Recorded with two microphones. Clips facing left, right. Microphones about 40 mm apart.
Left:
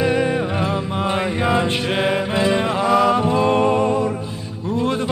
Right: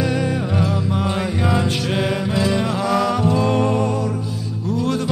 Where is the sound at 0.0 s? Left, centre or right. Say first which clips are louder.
Left 3 dB; left.